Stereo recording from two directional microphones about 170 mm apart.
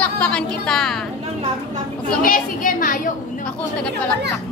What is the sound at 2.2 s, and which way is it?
Speech, 55° left (ahead or behind).